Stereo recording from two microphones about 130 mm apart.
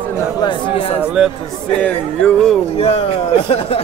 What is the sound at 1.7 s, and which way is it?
Speech, 10° left (ahead or behind).